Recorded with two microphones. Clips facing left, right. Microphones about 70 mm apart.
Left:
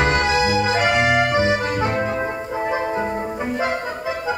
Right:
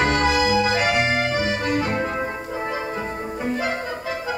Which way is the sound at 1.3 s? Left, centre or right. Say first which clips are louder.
Left 3 dB; left.